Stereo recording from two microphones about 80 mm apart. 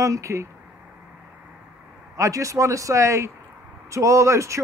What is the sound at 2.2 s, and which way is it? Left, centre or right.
Speech, right.